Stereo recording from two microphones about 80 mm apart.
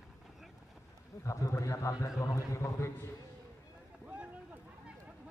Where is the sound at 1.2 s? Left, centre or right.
Left.